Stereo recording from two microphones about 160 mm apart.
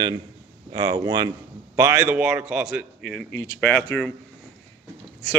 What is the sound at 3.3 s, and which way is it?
Speech, 15° left (ahead or behind).